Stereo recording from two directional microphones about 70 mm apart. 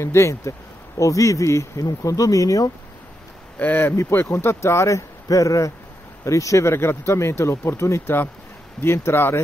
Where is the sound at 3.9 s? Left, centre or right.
Left.